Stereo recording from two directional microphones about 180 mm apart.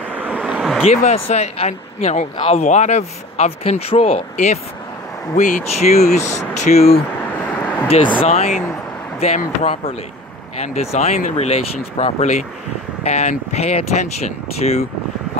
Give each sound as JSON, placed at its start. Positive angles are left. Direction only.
{"t": 0.1, "sound": "vehicle", "side_deg": -10}
{"t": 0.8, "sound": "speech", "side_deg": 35}
{"t": 8.1, "sound": "speech", "side_deg": 35}